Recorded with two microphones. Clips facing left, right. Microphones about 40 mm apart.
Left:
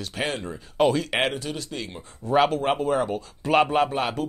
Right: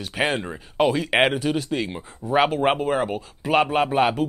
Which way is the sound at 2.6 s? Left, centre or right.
Right.